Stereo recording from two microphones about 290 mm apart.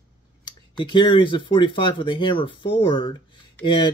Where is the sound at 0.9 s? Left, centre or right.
Centre.